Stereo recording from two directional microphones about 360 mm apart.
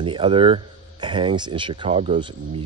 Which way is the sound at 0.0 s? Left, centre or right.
Centre.